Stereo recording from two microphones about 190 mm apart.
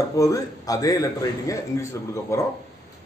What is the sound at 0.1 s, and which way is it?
A man's voice, 20° left (ahead or behind).